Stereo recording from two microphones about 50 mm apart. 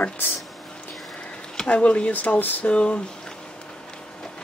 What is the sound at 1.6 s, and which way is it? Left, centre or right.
Speech, left.